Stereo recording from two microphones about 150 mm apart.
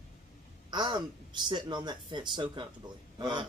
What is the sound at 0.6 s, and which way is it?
A man's voice, 30° right (ahead or behind).